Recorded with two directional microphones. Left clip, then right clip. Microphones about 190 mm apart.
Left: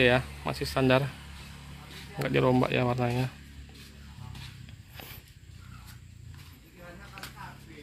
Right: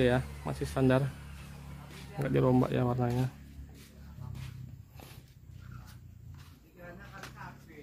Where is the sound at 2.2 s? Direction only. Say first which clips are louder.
Left 3 dB; centre (ahead or behind).